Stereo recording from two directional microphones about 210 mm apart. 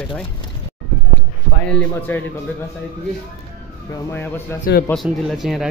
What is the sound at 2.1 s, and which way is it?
Speech, 10° left (ahead or behind).